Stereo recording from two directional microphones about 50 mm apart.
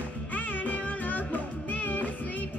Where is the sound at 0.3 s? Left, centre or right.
Left.